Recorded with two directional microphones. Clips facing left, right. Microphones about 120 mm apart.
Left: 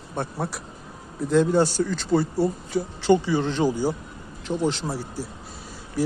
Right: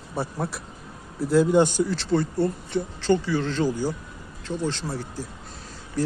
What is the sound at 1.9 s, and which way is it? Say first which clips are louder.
Speech: left 1 dB; centre (ahead or behind).